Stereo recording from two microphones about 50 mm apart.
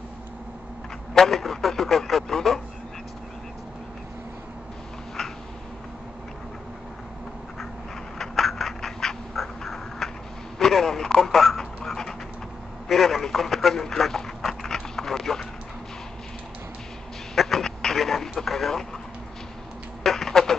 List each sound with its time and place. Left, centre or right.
1.1 s speech: centre
8.2 s cat: centre
10.6 s dog: centre
12.8 s telephone: centre
17.4 s a sound: centre
20.0 s a sound: centre